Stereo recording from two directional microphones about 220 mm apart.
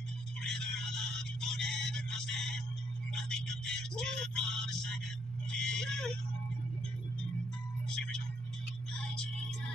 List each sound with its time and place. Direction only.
0.4 s a sound: 5° left (ahead or behind)
1.4 s music: centre (ahead or behind)
3.3 s speech: 5° left (ahead or behind)
8.9 s music: 5° left (ahead or behind)